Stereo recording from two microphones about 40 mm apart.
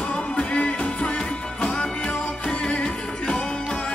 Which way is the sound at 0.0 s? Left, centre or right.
Left.